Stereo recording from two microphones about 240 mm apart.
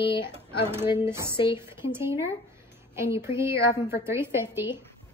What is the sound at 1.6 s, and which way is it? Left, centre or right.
A woman's voice, centre.